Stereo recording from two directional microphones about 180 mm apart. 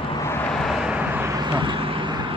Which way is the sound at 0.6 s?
5° right (ahead or behind).